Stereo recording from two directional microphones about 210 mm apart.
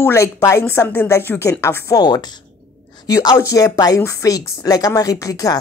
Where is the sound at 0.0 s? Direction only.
15° left (ahead or behind).